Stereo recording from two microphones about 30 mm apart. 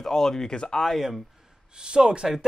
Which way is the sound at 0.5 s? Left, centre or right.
Left.